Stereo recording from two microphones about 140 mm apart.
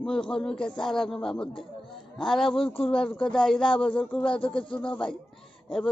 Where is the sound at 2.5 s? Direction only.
40° left (ahead or behind).